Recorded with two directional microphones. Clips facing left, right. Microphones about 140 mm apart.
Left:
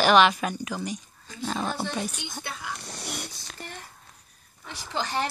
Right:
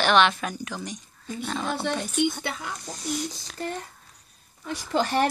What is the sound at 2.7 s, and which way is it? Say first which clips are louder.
Speech: right 6 dB; 65° left (ahead or behind).